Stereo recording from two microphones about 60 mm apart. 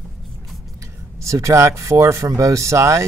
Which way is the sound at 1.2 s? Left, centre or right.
Right.